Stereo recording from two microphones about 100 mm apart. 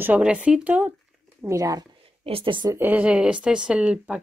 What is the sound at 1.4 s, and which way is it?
Speech, 35° right (ahead or behind).